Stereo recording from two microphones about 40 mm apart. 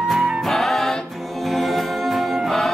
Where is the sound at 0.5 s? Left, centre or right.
Centre.